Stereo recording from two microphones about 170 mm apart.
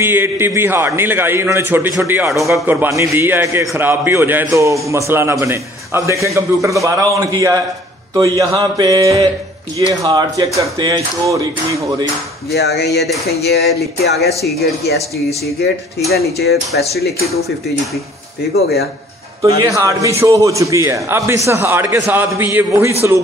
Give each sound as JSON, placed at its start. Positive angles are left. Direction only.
{"t": 0.0, "sound": "a man's voice", "side_deg": -15}
{"t": 12.4, "sound": "speech", "side_deg": 75}
{"t": 16.1, "sound": "speech", "side_deg": 70}
{"t": 18.5, "sound": "speech", "side_deg": 70}
{"t": 19.4, "sound": "a man's voice", "side_deg": -20}